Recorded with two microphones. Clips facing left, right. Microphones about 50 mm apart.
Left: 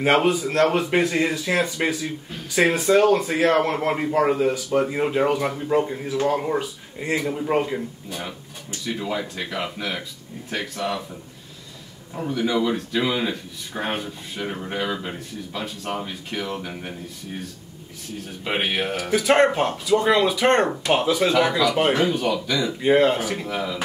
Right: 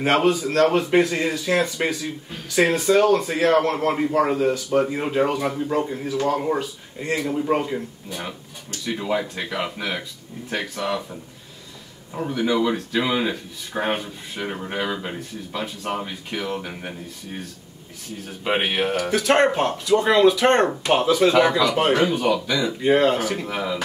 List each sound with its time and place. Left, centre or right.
0.0 s a man's voice: centre
7.2 s a man's voice: centre
8.8 s speech: centre
12.1 s speech: centre
18.4 s speech: centre
18.9 s a man's voice: centre
20.8 s speech: centre
21.9 s speech: centre
22.8 s speech: centre
23.4 s speech: centre